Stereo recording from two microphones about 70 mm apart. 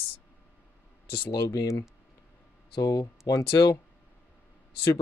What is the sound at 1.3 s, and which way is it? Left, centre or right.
Speech, left.